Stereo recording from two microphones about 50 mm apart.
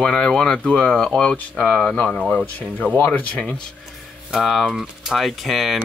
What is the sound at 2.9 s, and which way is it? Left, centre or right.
Speech, left.